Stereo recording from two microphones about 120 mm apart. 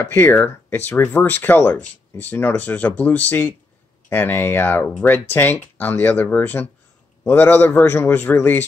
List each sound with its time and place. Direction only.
0.0 s speech: 20° left (ahead or behind)